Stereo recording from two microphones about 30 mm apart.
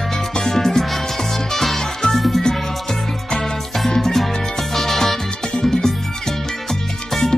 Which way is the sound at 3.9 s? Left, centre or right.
Centre.